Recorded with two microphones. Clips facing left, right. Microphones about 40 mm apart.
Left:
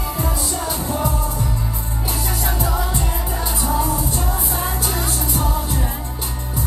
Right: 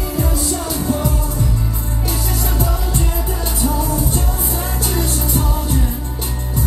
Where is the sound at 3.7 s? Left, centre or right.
Left.